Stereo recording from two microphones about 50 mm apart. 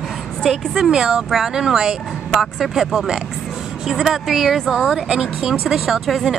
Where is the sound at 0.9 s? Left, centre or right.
Centre.